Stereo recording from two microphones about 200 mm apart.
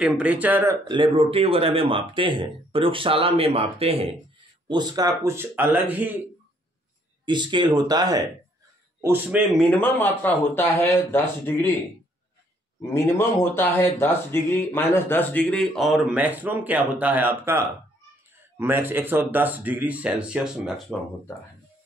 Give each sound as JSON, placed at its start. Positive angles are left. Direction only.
{"t": 0.0, "sound": "speech", "side_deg": -5}
{"t": 0.8, "sound": "speech", "side_deg": -25}
{"t": 7.2, "sound": "speech", "side_deg": -20}
{"t": 9.0, "sound": "speech", "side_deg": -10}
{"t": 9.6, "sound": "speech", "side_deg": 5}
{"t": 12.9, "sound": "speech", "side_deg": 10}